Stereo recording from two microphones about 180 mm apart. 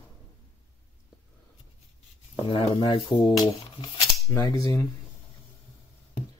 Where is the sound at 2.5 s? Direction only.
30° left (ahead or behind).